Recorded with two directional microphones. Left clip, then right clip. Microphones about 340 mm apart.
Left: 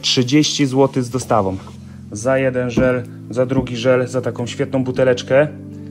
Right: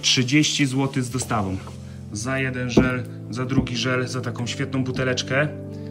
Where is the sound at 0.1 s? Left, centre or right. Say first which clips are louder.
Left 4 dB; centre.